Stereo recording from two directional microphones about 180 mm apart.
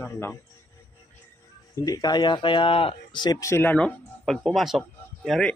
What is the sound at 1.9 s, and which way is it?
Speech, 20° left (ahead or behind).